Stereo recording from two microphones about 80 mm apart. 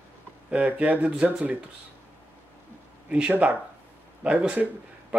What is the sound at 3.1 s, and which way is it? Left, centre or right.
Speech, centre.